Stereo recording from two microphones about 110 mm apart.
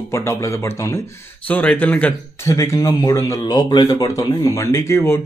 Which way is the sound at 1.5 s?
15° left (ahead or behind).